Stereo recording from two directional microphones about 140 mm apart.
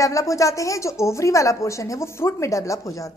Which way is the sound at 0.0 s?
25° left (ahead or behind).